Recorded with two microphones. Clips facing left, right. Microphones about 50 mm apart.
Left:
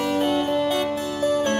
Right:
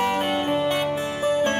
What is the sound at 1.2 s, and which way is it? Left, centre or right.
Music, right.